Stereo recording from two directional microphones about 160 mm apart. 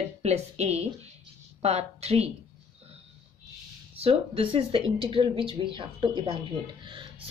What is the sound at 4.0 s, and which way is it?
A woman's voice, 35° right (ahead or behind).